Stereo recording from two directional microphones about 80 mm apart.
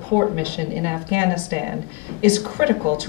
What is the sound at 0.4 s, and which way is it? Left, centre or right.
Speech, right.